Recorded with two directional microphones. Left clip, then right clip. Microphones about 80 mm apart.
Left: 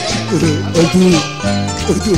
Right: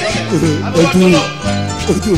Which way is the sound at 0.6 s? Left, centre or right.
Left.